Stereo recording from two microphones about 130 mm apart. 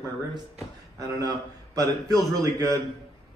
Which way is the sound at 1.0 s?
25° right (ahead or behind).